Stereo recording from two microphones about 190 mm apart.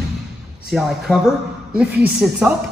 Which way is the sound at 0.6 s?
Centre (ahead or behind).